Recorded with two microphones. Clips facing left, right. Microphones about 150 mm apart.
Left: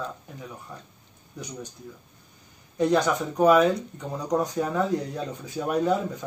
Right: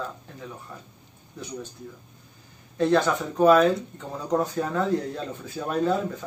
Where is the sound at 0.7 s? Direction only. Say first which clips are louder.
Even; 15° left (ahead or behind).